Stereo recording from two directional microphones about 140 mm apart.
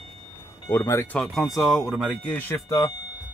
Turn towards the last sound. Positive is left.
turn(degrees=30)  # may be behind; listen again after turning